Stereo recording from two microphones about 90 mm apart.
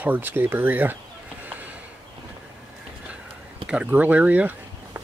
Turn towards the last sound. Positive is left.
turn(degrees=-15)  # may be behind; listen again after turning